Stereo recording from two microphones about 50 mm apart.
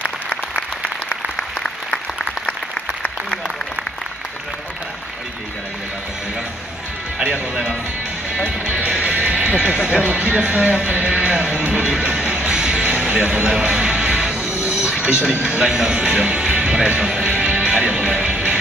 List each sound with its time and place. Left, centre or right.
0.0 s applause: left
8.5 s music: right
9.8 s speech: right
11.9 s music: centre
14.4 s music: left
14.9 s music: centre
15.4 s speech: centre
17.3 s music: right